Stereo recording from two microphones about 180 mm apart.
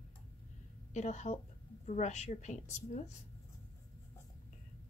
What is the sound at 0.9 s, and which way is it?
A woman's voice, 40° left (ahead or behind).